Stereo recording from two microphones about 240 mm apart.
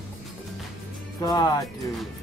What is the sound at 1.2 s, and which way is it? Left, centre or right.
Music, centre.